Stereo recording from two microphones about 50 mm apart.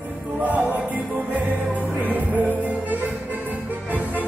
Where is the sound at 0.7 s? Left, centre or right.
Right.